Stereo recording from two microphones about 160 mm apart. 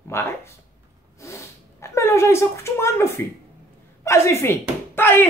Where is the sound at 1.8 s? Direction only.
15° left (ahead or behind).